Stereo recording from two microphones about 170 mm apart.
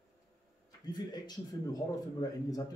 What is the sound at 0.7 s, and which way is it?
Speech, 25° left (ahead or behind).